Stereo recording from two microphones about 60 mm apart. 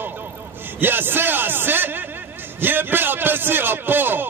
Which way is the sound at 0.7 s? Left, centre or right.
Right.